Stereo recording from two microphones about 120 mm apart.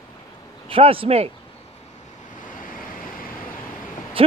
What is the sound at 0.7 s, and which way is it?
Speech, 50° right (ahead or behind).